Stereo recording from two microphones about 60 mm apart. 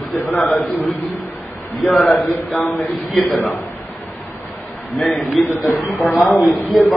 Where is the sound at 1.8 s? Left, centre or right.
Centre.